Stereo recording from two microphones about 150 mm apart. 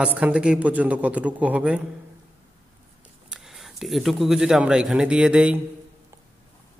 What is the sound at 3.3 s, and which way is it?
Speech, centre (ahead or behind).